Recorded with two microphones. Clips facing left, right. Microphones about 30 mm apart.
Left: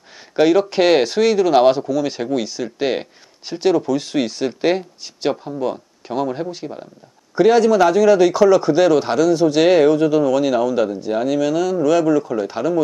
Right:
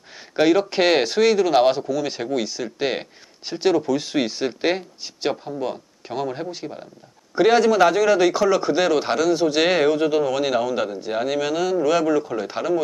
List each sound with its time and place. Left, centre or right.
0.4 s speech: centre